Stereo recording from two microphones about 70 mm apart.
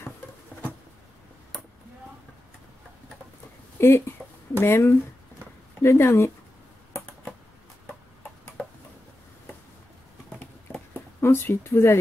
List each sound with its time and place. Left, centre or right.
3.7 s speech: left
11.1 s a woman's voice: left